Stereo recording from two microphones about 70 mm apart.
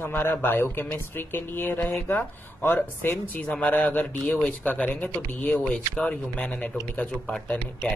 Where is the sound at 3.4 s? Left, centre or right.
Centre.